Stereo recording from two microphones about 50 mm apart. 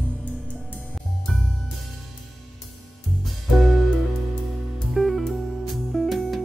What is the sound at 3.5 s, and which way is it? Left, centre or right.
Music, centre.